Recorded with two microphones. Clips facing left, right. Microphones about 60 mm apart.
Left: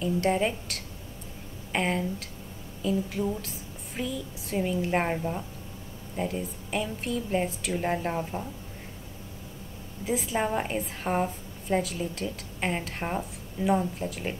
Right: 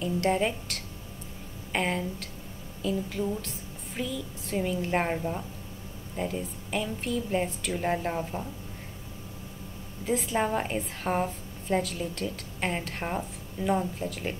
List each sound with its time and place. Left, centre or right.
0.0 s a woman's voice: centre
10.0 s a woman's voice: centre